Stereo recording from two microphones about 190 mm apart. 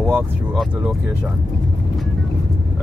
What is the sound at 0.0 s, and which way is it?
Speech, 5° right (ahead or behind).